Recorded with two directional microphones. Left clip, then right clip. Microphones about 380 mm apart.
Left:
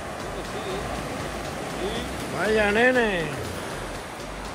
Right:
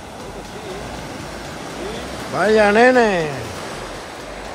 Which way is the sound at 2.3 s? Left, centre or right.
Centre.